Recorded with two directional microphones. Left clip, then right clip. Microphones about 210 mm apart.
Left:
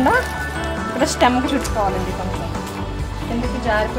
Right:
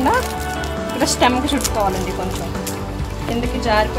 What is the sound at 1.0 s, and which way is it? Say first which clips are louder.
Speech: even; 20° left (ahead or behind).